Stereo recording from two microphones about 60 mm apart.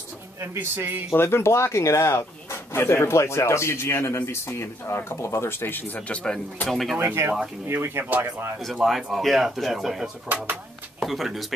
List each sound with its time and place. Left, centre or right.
0.6 s speech: right
1.1 s speech: left
5.9 s speech: centre
6.7 s speech: centre
7.2 s speech: right
8.8 s speech: centre
10.2 s speech: right
11.0 s speech: centre